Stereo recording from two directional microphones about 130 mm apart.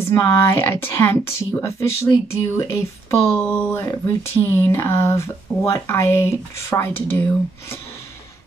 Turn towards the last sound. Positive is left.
turn(degrees=15)  # may be behind; listen again after turning